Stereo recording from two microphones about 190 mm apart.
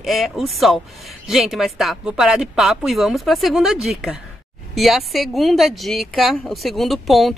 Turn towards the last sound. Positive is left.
turn(degrees=0)  # may be behind; listen again after turning